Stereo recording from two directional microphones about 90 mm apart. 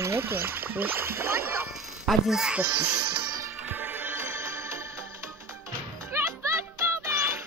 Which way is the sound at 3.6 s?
20° right (ahead or behind).